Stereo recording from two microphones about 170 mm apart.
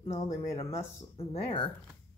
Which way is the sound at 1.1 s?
30° left (ahead or behind).